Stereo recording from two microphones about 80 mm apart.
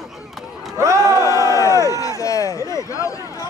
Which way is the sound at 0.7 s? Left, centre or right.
Right.